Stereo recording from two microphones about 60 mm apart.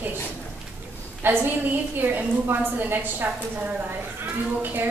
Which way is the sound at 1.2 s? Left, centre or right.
Right.